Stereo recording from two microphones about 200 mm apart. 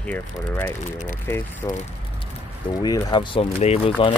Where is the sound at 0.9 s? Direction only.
40° left (ahead or behind).